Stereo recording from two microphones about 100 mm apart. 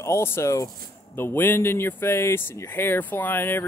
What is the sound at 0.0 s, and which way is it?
Speech, 25° left (ahead or behind).